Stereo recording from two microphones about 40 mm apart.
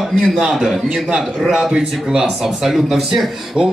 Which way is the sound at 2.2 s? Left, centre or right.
Centre.